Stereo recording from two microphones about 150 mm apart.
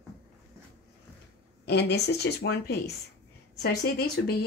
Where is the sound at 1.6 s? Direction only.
90° left.